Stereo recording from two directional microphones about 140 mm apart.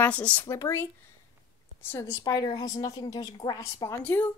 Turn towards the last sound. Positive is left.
turn(degrees=15)  # may be behind; listen again after turning